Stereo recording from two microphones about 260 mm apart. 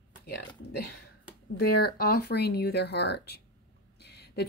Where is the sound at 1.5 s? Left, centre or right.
Left.